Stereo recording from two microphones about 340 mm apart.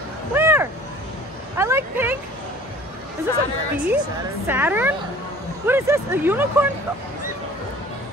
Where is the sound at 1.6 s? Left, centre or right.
Centre.